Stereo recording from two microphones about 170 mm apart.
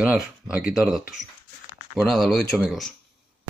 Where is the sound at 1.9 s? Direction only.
Centre (ahead or behind).